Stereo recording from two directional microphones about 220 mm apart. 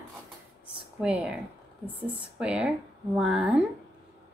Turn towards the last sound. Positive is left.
turn(degrees=-5)  # may be behind; listen again after turning